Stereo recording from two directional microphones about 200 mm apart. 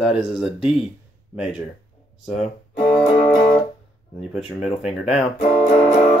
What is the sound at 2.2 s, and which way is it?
Speech, centre (ahead or behind).